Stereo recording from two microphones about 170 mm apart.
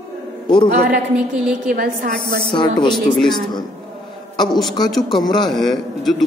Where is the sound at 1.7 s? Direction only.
60° right (ahead or behind).